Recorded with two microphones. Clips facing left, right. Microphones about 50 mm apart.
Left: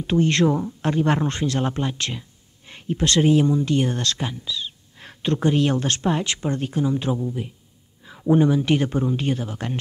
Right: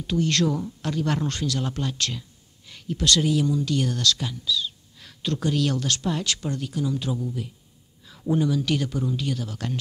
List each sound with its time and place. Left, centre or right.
0.0 s speech: left